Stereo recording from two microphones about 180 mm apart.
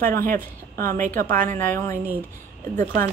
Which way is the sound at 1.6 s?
10° left (ahead or behind).